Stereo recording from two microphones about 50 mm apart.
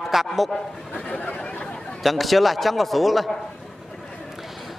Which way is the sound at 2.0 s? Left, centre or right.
Centre.